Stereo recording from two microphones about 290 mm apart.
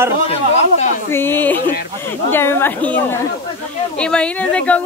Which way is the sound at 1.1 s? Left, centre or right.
Centre.